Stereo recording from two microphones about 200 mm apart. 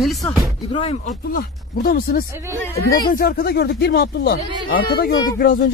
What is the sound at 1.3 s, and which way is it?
Speech, 45° left (ahead or behind).